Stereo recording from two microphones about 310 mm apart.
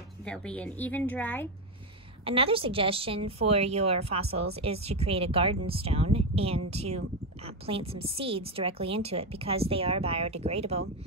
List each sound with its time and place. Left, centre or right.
0.2 s a woman's voice: centre
2.2 s a woman's voice: centre